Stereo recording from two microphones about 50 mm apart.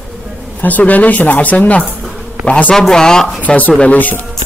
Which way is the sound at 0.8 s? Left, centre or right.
Left.